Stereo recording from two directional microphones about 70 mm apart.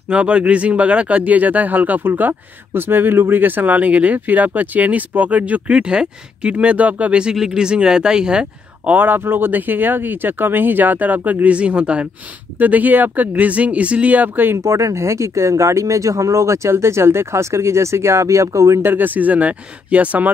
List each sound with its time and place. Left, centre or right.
0.1 s speech: centre
8.9 s speech: right
14.6 s speech: right
18.9 s speech: right